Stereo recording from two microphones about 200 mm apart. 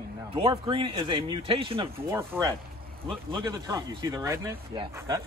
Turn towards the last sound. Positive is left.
turn(degrees=-20)  # may be behind; listen again after turning